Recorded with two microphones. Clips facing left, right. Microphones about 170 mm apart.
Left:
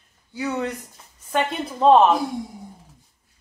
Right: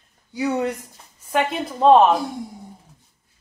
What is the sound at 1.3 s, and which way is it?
Speech, centre (ahead or behind).